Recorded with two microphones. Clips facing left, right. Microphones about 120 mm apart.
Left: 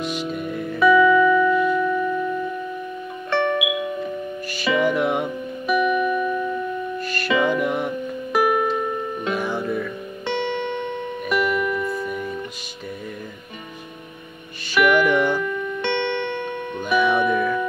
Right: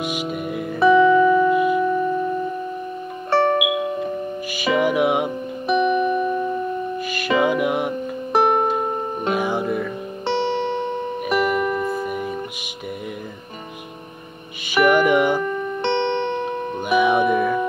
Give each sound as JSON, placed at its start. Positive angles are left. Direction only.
{"t": 0.1, "sound": "music", "side_deg": -10}
{"t": 0.7, "sound": "music", "side_deg": -35}
{"t": 1.5, "sound": "music", "side_deg": -55}
{"t": 1.8, "sound": "music", "side_deg": -35}
{"t": 4.7, "sound": "music", "side_deg": -10}
{"t": 5.7, "sound": "music", "side_deg": -30}
{"t": 7.1, "sound": "music", "side_deg": -15}
{"t": 8.3, "sound": "music", "side_deg": -35}
{"t": 8.6, "sound": "music", "side_deg": -50}
{"t": 10.2, "sound": "music", "side_deg": -35}
{"t": 14.7, "sound": "music", "side_deg": -50}
{"t": 15.0, "sound": "music", "side_deg": -15}
{"t": 15.4, "sound": "music", "side_deg": -30}
{"t": 16.9, "sound": "music", "side_deg": -55}